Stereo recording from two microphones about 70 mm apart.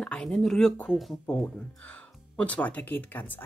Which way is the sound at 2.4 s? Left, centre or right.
Left.